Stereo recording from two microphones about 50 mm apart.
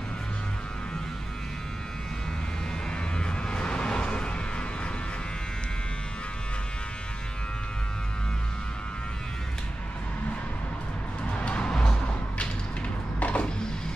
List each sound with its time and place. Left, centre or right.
3.2 s a sound: centre
11.2 s music: left
13.2 s music: left